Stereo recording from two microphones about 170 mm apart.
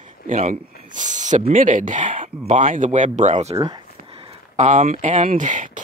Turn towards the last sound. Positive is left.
turn(degrees=-50)  # may be behind; listen again after turning